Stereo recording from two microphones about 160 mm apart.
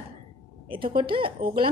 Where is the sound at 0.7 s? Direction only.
30° right (ahead or behind).